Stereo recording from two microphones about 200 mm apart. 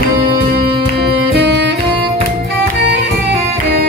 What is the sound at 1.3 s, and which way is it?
Music, 60° right (ahead or behind).